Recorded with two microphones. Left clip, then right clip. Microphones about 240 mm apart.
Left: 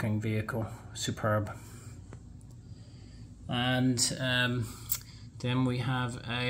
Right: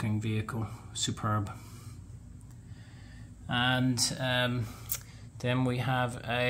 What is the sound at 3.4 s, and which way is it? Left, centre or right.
Speech, right.